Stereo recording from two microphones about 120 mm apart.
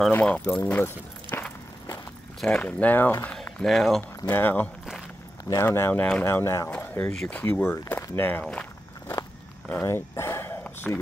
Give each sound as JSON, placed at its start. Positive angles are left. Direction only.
{"t": 0.1, "sound": "speech", "side_deg": 15}
{"t": 2.4, "sound": "speech", "side_deg": 10}
{"t": 3.4, "sound": "speech", "side_deg": 5}
{"t": 4.2, "sound": "speech", "side_deg": 20}
{"t": 6.7, "sound": "a sound", "side_deg": 15}
{"t": 7.2, "sound": "speech", "side_deg": 10}
{"t": 9.7, "sound": "a sound", "side_deg": 15}